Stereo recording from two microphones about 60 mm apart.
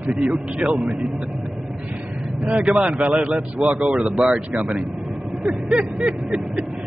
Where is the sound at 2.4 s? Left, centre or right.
Right.